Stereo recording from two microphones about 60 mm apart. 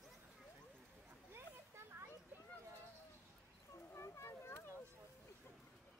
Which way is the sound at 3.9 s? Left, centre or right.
Left.